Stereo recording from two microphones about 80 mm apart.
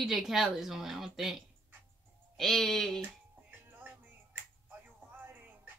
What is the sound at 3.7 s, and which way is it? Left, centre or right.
Music, right.